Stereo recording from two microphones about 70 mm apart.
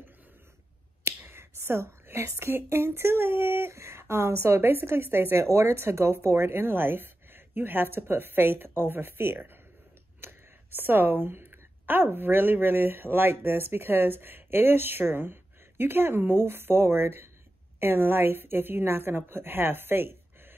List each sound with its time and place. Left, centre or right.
1.2 s a woman's voice: right